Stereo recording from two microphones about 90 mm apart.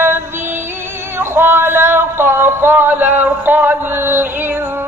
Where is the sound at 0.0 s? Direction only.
25° right (ahead or behind).